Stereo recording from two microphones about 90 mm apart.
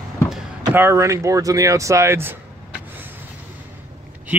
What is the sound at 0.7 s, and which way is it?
Speech, 30° right (ahead or behind).